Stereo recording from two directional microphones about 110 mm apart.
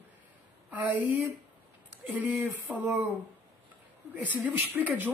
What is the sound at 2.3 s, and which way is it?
Speech, 25° right (ahead or behind).